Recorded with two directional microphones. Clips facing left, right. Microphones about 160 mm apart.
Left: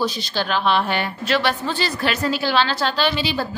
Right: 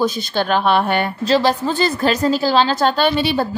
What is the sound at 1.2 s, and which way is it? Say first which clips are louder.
A woman's voice: right 5 dB; 35° right (ahead or behind).